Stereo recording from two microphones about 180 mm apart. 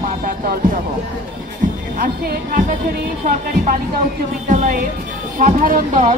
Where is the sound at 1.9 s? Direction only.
50° right (ahead or behind).